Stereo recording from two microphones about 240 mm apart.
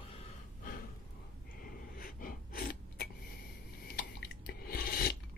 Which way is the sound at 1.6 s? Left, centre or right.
Left.